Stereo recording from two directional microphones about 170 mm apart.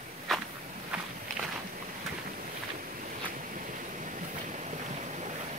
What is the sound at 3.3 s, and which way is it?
Boat, 50° right (ahead or behind).